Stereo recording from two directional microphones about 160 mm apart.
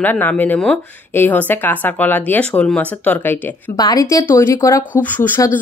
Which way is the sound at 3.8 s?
20° left (ahead or behind).